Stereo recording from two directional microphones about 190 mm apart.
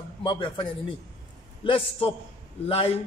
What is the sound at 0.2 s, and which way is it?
A man's voice, 25° left (ahead or behind).